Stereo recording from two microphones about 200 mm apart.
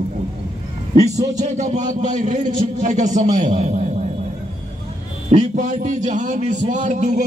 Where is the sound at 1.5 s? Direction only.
35° right (ahead or behind).